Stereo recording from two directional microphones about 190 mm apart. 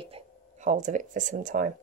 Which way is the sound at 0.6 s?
40° right (ahead or behind).